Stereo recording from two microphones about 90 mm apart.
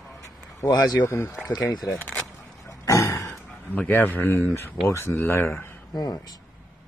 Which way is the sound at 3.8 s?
20° left (ahead or behind).